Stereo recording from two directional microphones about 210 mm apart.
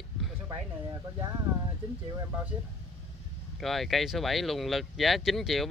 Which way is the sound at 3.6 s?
Centre (ahead or behind).